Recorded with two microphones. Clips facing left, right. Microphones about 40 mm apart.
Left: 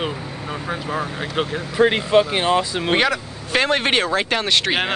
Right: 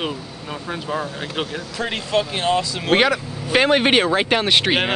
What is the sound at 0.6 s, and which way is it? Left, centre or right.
Speech, centre.